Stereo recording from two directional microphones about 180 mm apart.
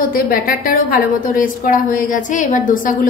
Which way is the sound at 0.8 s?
50° left (ahead or behind).